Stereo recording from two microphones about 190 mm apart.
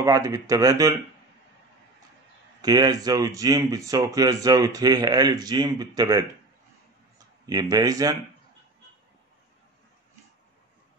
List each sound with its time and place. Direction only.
0.0 s speech: 15° right (ahead or behind)
2.6 s speech: 20° right (ahead or behind)